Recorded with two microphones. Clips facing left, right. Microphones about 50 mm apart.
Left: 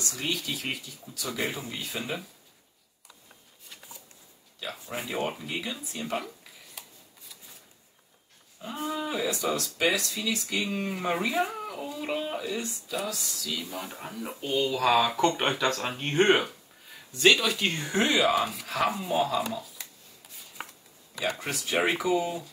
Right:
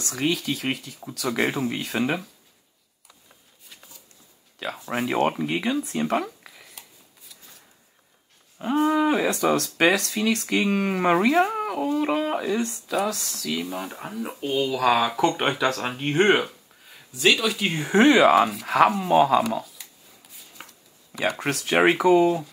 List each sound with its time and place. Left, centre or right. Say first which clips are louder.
0.1 s speech: right 9 dB; right
0.5 s speech: right 6 dB; right
4.6 s speech: right 8 dB; right
6.8 s shuffling cards: left 4 dB; centre
8.5 s speech: right 12 dB; right
13.8 s speech: right 5 dB; centre
17.6 s speech: right 3 dB; centre
17.9 s speech: right 9 dB; right
18.8 s speech: right 9 dB; right
20.6 s a sound: left 4 dB; centre
21.1 s speech: right 6 dB; right